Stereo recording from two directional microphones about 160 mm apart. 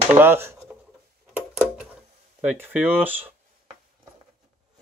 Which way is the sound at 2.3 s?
10° right (ahead or behind).